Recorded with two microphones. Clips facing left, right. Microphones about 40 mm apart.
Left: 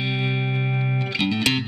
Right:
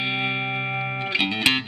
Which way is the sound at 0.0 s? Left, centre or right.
Right.